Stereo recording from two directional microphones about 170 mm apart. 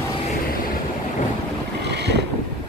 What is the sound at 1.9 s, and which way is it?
Boat, 85° right.